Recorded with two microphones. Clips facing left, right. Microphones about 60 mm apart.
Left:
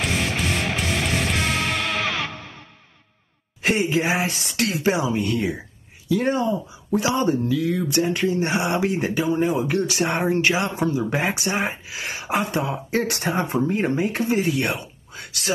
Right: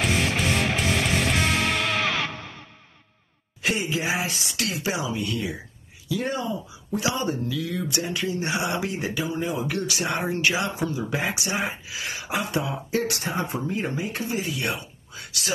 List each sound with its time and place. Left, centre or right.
0.0 s music: centre
3.6 s speech: left